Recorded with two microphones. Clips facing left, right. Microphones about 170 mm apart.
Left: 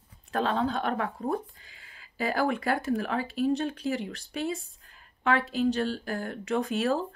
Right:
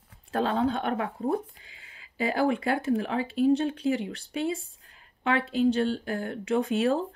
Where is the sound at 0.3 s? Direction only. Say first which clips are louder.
Right 2 dB; 25° right (ahead or behind).